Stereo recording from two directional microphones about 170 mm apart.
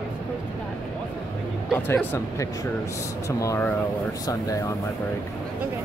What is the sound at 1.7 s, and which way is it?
Speech, 10° left (ahead or behind).